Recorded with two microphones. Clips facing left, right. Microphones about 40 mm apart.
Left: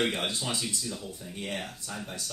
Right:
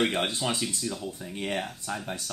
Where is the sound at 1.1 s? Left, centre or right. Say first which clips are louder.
Right 4 dB; right.